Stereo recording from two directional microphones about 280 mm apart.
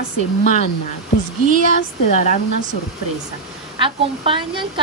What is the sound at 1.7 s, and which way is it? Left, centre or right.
Speech, left.